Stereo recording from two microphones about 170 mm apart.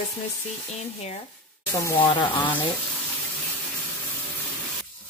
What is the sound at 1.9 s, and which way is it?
Speech, 30° left (ahead or behind).